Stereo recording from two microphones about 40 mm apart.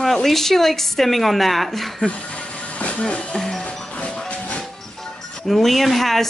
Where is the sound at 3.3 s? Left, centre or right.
Centre.